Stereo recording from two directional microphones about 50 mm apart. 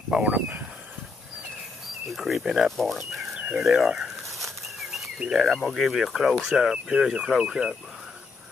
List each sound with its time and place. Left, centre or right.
0.1 s speech: right
2.0 s speech: centre
4.4 s bird flight: centre
5.3 s speech: centre